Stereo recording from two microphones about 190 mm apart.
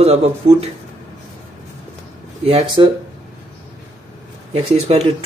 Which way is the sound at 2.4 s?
30° right (ahead or behind).